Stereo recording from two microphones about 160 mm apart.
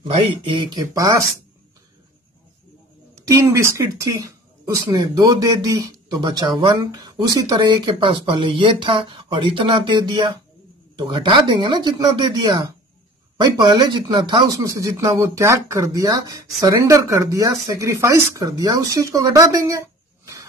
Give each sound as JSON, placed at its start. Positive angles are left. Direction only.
{"t": 0.1, "sound": "speech", "side_deg": -35}
{"t": 3.7, "sound": "speech", "side_deg": -20}